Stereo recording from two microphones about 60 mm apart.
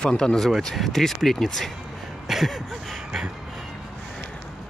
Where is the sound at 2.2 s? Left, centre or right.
Centre.